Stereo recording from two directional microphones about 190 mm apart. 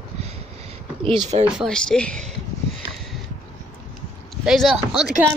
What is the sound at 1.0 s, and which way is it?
Speech, 25° right (ahead or behind).